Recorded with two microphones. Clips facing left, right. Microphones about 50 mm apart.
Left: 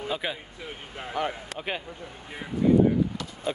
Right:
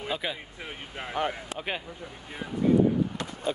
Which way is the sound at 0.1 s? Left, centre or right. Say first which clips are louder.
Left 1 dB; centre.